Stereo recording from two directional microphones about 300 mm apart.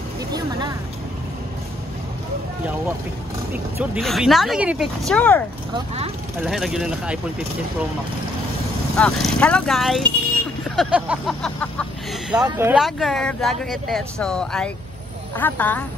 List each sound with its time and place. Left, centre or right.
0.3 s speech: centre
3.5 s speech: centre
6.4 s speech: centre
8.9 s speech: centre